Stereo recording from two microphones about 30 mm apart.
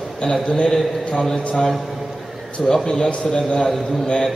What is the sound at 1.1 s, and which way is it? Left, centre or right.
Speech, centre.